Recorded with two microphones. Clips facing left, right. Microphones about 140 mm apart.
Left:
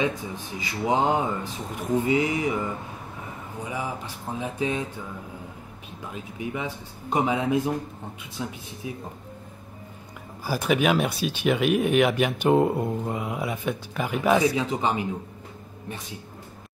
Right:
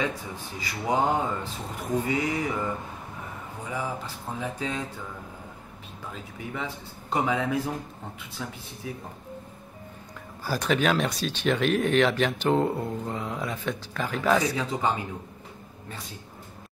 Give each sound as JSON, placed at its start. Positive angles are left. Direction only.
{"t": 0.6, "sound": "speech", "side_deg": 20}
{"t": 3.6, "sound": "speech", "side_deg": 20}
{"t": 6.1, "sound": "speech", "side_deg": 15}
{"t": 10.4, "sound": "speech", "side_deg": 10}